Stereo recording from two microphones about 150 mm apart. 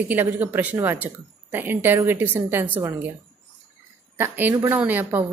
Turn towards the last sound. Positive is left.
turn(degrees=-15)  # may be behind; listen again after turning